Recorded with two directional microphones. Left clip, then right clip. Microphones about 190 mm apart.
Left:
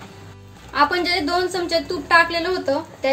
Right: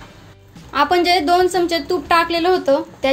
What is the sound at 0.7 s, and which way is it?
A woman's voice, 40° right (ahead or behind).